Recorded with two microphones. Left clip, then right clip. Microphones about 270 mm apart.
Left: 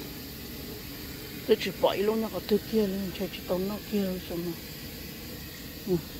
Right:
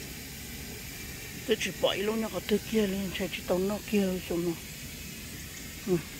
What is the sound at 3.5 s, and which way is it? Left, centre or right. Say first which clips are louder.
Speech: right 2 dB; centre.